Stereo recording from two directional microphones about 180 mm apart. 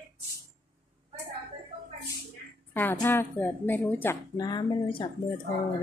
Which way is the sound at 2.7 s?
10° left (ahead or behind).